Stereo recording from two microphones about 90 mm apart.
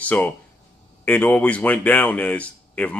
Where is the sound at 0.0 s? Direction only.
15° left (ahead or behind).